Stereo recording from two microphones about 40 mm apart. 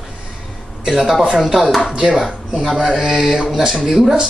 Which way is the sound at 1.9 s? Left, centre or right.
Centre.